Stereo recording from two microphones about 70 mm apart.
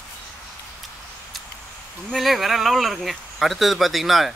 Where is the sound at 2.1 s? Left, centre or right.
Centre.